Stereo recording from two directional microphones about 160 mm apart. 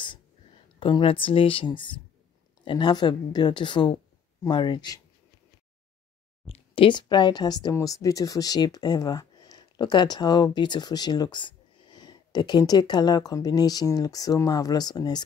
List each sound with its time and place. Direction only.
0.7 s speech: 30° left (ahead or behind)
6.5 s speech: 35° left (ahead or behind)